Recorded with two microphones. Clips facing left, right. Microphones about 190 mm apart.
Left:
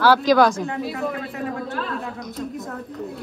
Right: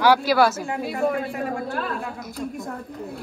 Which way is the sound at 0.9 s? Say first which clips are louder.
Right 3 dB; 50° right (ahead or behind).